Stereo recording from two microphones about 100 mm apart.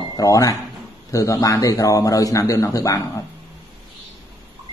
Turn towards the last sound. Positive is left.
turn(degrees=35)  # may be behind; listen again after turning